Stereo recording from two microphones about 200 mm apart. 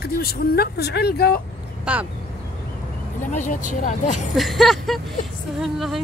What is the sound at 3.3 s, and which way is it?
Speech, 40° left (ahead or behind).